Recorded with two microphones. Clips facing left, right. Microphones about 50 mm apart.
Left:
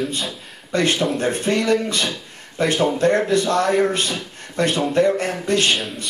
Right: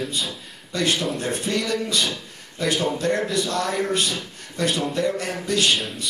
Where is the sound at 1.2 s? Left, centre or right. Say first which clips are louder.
Left 5 dB; left.